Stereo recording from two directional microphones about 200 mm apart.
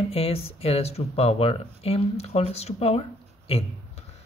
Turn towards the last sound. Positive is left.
turn(degrees=30)  # may be behind; listen again after turning